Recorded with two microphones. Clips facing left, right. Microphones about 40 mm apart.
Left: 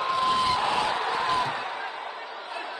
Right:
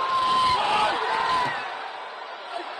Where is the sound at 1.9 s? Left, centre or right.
Left.